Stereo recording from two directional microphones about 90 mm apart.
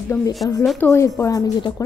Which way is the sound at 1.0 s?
35° left (ahead or behind).